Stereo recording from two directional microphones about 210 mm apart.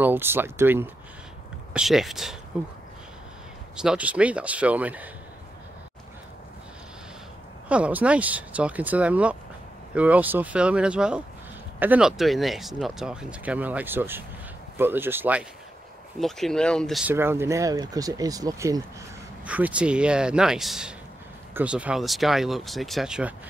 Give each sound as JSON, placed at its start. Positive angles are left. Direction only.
{"t": 0.0, "sound": "speech", "side_deg": -10}
{"t": 3.7, "sound": "speech", "side_deg": -5}
{"t": 7.6, "sound": "speech", "side_deg": -5}
{"t": 16.2, "sound": "speech", "side_deg": 0}
{"t": 17.1, "sound": "speech", "side_deg": -10}